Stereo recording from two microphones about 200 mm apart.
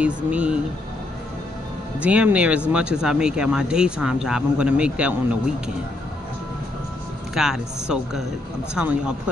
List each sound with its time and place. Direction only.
0.0 s speech: 5° right (ahead or behind)
2.0 s speech: 5° right (ahead or behind)
7.3 s speech: 5° right (ahead or behind)